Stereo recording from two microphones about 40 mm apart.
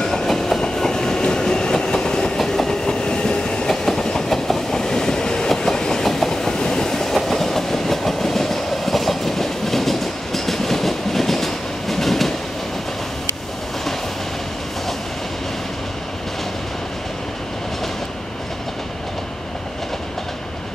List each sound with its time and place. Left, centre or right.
0.0 s train: centre
2.3 s train: centre
3.6 s train: centre